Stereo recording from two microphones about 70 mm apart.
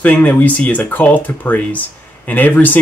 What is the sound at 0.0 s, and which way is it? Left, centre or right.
Speech, left.